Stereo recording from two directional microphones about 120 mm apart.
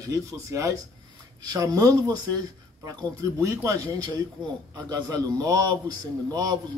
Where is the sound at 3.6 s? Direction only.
30° right (ahead or behind).